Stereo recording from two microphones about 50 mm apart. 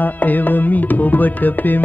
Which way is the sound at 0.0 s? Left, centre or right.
Left.